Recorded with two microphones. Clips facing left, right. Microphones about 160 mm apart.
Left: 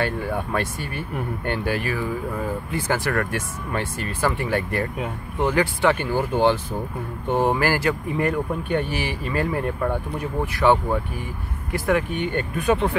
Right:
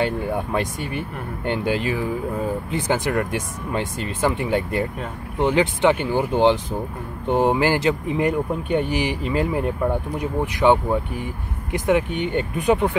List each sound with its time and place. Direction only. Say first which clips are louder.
0.0 s speech: right 2 dB; 15° right (ahead or behind)